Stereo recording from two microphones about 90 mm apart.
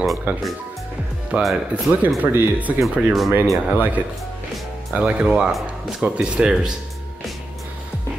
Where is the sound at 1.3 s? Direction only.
15° right (ahead or behind).